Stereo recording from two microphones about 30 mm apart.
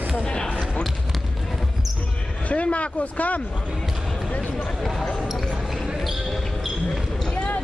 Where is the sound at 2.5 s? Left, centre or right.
Left.